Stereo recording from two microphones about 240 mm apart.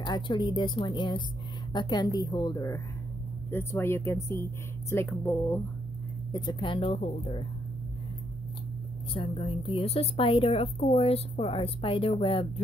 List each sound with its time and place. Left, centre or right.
0.0 s a woman's voice: centre
9.1 s a woman's voice: left